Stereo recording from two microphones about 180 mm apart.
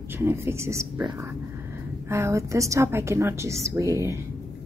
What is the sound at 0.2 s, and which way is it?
A woman's voice, 15° right (ahead or behind).